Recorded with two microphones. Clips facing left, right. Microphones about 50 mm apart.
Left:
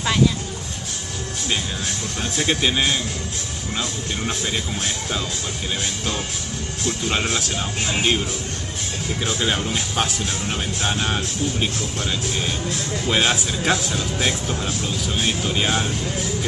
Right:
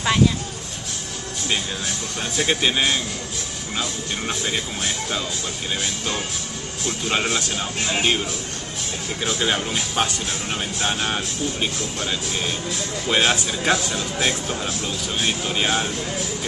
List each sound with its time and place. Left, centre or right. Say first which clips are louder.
2.3 s speech: even; centre
4.3 s speech: right 1 dB; centre
7.1 s speech: right 2 dB; centre
9.2 s speech: right 1 dB; centre
13.1 s speech: right 1 dB; centre